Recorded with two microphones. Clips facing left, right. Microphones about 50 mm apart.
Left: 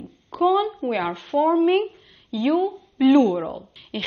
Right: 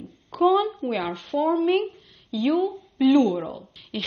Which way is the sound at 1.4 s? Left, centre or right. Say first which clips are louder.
Left 3 dB; centre.